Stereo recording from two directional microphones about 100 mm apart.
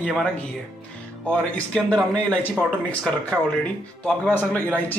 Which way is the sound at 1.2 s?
10° left (ahead or behind).